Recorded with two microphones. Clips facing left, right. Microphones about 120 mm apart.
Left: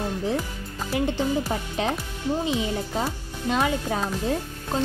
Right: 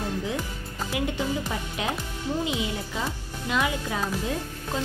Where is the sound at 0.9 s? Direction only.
35° left (ahead or behind).